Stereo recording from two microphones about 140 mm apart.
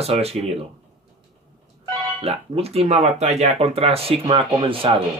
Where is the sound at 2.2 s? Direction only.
45° right (ahead or behind).